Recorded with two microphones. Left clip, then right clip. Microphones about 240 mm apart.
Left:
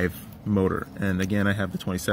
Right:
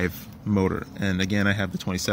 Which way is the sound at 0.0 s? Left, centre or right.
Centre.